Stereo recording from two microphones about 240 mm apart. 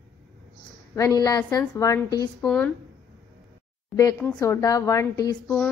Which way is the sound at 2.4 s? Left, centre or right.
Centre.